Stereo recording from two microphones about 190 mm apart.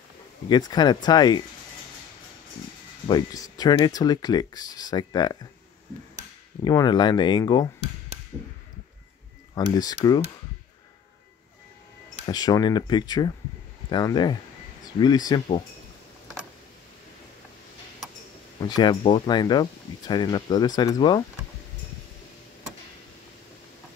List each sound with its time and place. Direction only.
0.5 s speech: 20° left (ahead or behind)
3.1 s speech: 20° left (ahead or behind)
6.6 s speech: 20° left (ahead or behind)
9.8 s speech: 20° left (ahead or behind)
12.3 s speech: 20° left (ahead or behind)
18.6 s speech: 20° left (ahead or behind)